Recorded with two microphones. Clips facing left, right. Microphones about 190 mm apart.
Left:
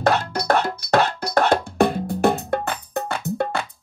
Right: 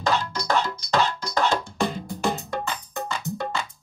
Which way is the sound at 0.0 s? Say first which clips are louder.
Left 5 dB; 60° left (ahead or behind).